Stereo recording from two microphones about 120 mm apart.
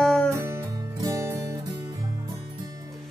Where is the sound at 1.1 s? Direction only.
25° right (ahead or behind).